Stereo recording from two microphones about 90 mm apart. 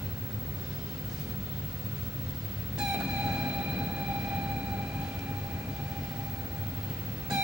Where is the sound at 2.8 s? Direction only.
10° right (ahead or behind).